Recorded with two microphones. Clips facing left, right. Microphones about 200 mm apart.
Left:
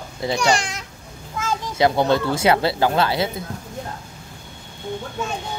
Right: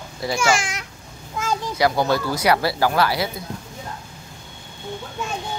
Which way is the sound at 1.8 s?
25° left (ahead or behind).